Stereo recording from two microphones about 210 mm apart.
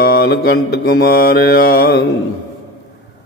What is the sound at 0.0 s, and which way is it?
Mantra, 50° left (ahead or behind).